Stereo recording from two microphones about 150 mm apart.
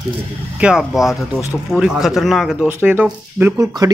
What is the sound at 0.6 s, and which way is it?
Speech, centre (ahead or behind).